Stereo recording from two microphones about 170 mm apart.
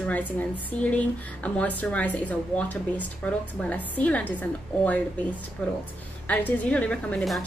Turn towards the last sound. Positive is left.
turn(degrees=5)  # may be behind; listen again after turning